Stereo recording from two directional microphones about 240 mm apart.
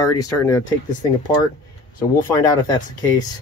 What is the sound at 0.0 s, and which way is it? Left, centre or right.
Speech, centre.